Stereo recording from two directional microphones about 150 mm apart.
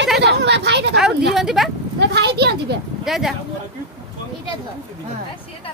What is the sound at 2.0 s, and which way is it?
Speech, 90° right.